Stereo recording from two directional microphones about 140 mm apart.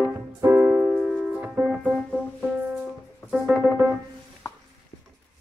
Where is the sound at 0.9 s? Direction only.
10° right (ahead or behind).